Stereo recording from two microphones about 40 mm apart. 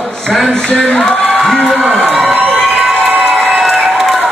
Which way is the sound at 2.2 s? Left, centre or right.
Right.